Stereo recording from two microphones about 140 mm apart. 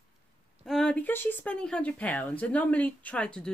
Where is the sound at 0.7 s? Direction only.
5° left (ahead or behind).